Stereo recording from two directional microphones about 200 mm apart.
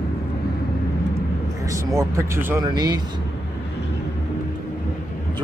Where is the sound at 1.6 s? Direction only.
15° right (ahead or behind).